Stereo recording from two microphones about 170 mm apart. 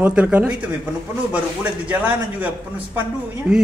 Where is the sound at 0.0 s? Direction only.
5° right (ahead or behind).